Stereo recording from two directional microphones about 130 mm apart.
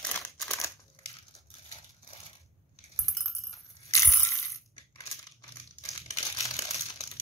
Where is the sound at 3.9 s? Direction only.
25° left (ahead or behind).